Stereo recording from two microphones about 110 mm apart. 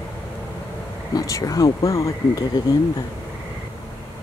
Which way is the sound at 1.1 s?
35° left (ahead or behind).